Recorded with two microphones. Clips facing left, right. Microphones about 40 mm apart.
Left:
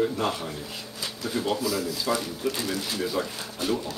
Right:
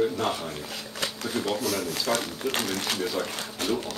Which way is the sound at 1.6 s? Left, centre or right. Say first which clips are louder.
Left 1 dB; right.